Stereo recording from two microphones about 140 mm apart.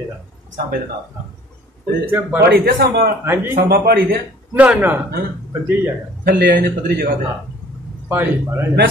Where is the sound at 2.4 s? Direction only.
90° right.